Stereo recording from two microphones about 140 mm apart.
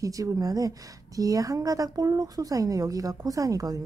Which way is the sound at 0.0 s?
25° right (ahead or behind).